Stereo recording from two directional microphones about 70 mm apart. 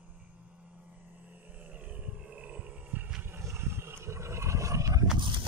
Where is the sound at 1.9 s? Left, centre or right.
Centre.